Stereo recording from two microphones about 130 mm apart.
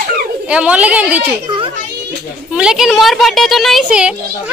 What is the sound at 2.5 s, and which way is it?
A child's voice, 5° right (ahead or behind).